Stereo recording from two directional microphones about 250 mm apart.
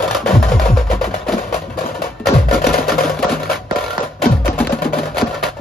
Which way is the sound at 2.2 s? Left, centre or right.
Centre.